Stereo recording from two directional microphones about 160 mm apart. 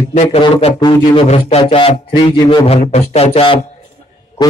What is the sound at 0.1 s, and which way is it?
Speech, 45° left (ahead or behind).